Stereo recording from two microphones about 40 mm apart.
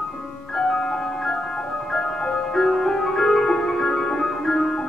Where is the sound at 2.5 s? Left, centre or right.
Centre.